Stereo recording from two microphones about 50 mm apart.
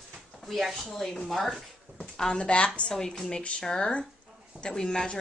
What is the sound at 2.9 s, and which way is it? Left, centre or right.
A woman's voice, centre.